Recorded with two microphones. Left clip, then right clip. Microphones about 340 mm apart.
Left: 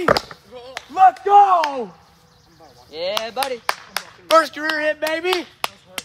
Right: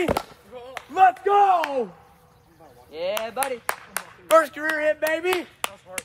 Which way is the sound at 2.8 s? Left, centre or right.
Left.